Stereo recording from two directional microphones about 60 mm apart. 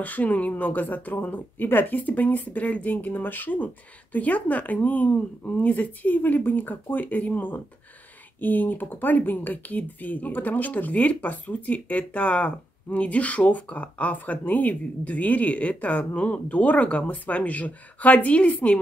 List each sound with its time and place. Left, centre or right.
0.0 s speech: left